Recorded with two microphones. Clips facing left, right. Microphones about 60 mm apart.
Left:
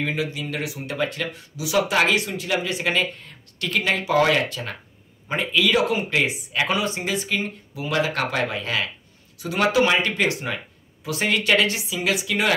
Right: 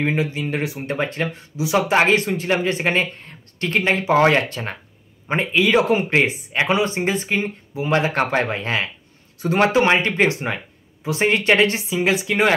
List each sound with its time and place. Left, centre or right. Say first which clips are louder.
0.0 s speech: right 4 dB; right